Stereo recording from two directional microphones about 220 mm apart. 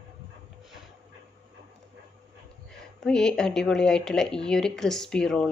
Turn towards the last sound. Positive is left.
turn(degrees=5)  # may be behind; listen again after turning